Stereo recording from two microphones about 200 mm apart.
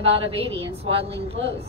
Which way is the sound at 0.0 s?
30° right (ahead or behind).